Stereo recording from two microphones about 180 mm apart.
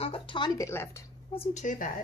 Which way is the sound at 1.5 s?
45° left (ahead or behind).